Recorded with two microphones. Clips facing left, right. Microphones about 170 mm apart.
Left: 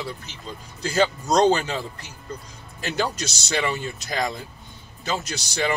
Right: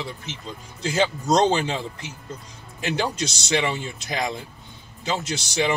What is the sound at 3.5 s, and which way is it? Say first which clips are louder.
Speech: right 1 dB; 20° right (ahead or behind).